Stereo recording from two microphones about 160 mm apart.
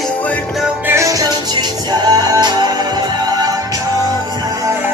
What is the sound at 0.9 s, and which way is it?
Music, 20° right (ahead or behind).